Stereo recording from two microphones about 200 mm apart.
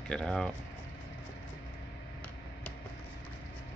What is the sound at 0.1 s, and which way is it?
Speech, 5° left (ahead or behind).